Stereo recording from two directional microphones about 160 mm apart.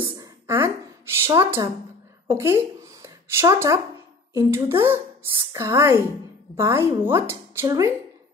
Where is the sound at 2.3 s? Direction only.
15° right (ahead or behind).